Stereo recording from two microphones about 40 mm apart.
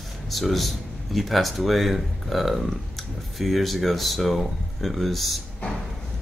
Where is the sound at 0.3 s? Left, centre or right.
Centre.